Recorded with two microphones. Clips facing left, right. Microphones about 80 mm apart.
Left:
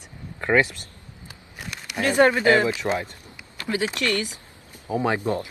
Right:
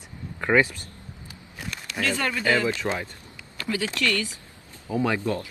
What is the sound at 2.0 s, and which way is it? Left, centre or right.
Speech, left.